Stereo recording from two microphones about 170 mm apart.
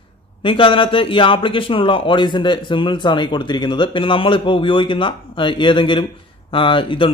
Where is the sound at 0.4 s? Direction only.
30° left (ahead or behind).